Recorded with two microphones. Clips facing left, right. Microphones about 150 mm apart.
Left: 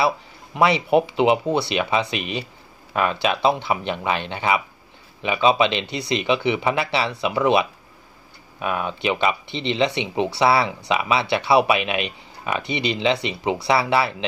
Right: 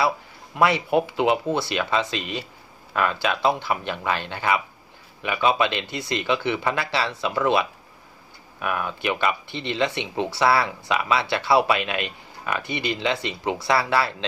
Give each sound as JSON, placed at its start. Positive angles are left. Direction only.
{"t": 0.6, "sound": "speech", "side_deg": 20}